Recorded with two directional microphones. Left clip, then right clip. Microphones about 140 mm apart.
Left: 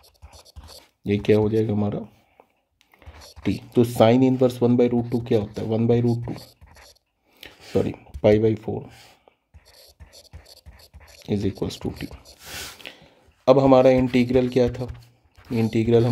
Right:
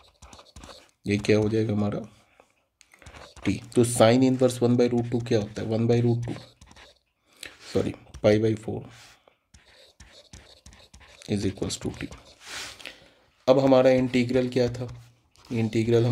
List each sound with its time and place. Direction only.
1.0 s speech: 35° left (ahead or behind)
3.5 s speech: 35° left (ahead or behind)
7.3 s a sound: 35° left (ahead or behind)
10.3 s scratch: 30° right (ahead or behind)
11.1 s speech: 35° left (ahead or behind)